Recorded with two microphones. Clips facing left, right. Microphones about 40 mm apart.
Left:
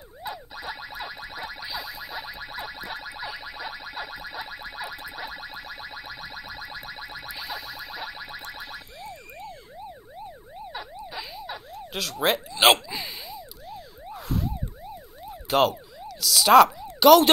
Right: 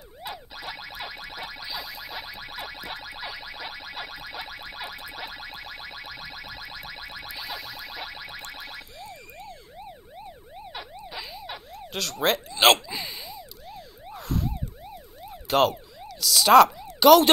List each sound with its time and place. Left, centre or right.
0.2 s music: right
7.2 s music: centre
11.1 s emergency vehicle: centre
11.7 s a sound: centre
15.2 s emergency vehicle: centre
16.1 s speech: centre